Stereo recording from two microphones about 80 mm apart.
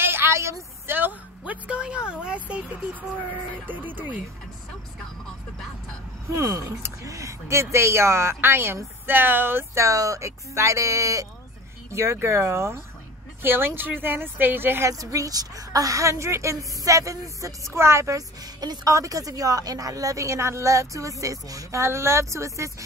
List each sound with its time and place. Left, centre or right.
0.0 s a sound: right
0.9 s speech: right
6.3 s speech: right
9.8 s a woman's voice: right
14.9 s a woman's voice: right
18.4 s a woman's voice: right
18.9 s a woman's voice: right